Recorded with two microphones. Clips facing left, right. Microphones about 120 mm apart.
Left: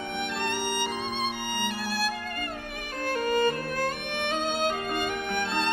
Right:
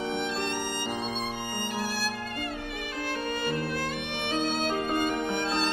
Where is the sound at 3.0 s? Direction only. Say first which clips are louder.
Left 7 dB; 45° left (ahead or behind).